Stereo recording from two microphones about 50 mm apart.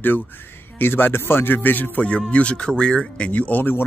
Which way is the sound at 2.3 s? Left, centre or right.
Left.